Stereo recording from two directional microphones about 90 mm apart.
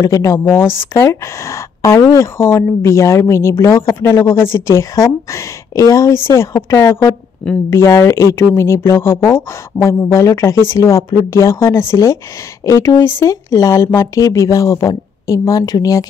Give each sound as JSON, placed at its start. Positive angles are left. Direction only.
{"t": 0.0, "sound": "a woman's voice", "side_deg": 35}